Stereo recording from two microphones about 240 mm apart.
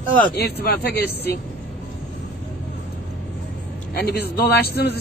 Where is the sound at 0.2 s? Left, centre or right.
Left.